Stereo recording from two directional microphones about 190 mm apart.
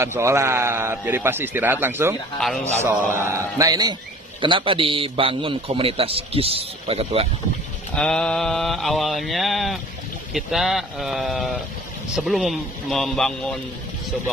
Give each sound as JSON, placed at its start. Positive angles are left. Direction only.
{"t": 0.0, "sound": "a man's voice", "side_deg": -15}
{"t": 2.4, "sound": "mantra", "side_deg": 5}
{"t": 2.8, "sound": "a man's voice", "side_deg": -15}
{"t": 7.9, "sound": "mantra", "side_deg": 5}